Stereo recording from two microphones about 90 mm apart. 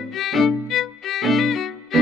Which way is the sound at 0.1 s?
Centre (ahead or behind).